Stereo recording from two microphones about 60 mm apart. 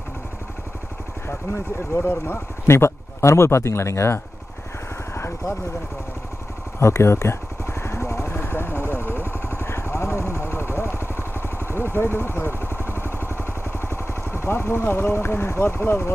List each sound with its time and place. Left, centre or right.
1.2 s speech: left
6.8 s vehicle: left
11.4 s speech: left
12.7 s vehicle: right
13.0 s vehicle: left